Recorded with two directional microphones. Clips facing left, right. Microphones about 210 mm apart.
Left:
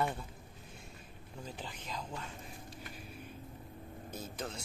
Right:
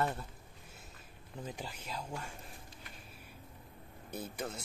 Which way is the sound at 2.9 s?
5° right (ahead or behind).